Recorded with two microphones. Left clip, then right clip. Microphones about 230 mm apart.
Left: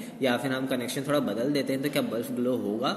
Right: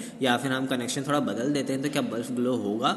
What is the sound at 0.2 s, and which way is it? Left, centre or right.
A man's voice, centre.